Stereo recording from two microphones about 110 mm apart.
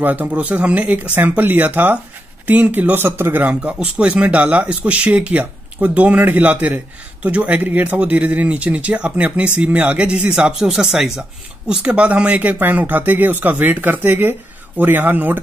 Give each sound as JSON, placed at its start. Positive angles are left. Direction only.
{"t": 0.0, "sound": "speech", "side_deg": -15}